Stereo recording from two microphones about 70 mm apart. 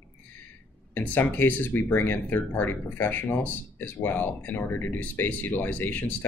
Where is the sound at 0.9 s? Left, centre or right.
Left.